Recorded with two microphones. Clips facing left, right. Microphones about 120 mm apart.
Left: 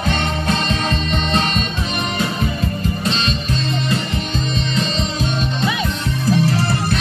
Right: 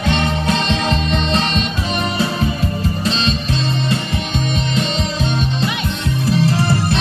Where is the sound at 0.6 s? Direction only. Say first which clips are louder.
Right 2 dB; 30° right (ahead or behind).